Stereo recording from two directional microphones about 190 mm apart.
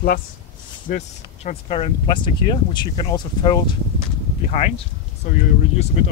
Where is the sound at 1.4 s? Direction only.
30° left (ahead or behind).